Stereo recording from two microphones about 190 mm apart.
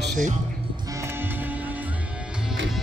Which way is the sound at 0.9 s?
15° right (ahead or behind).